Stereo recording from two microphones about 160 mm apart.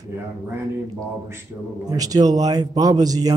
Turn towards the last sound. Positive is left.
turn(degrees=-25)  # may be behind; listen again after turning